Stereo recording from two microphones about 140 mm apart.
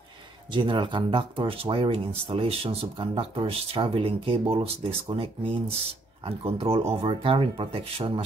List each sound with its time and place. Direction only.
0.5 s speech: 35° right (ahead or behind)